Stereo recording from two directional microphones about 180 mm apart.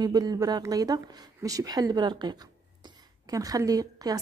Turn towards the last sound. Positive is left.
turn(degrees=-20)  # may be behind; listen again after turning